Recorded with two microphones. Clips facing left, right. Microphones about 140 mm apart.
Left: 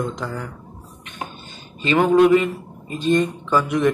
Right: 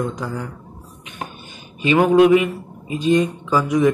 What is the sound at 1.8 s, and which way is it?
Speech, 10° right (ahead or behind).